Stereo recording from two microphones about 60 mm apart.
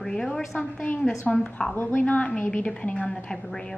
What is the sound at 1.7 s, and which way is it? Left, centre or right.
A woman's voice, left.